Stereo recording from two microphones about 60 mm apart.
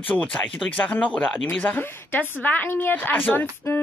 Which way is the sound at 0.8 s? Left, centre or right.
Left.